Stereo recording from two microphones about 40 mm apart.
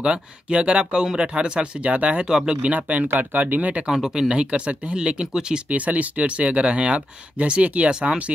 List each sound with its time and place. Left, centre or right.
0.0 s speech: right
2.2 s speech: centre
2.6 s speech: right
3.1 s speech: right
3.8 s speech: centre
4.1 s speech: right
5.7 s speech: right
7.9 s speech: right